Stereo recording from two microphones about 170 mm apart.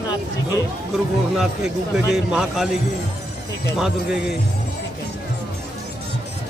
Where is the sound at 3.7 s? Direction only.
Centre (ahead or behind).